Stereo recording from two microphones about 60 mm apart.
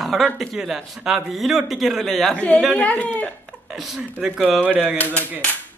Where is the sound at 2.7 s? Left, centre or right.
Left.